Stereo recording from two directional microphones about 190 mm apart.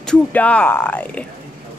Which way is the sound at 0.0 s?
5° left (ahead or behind).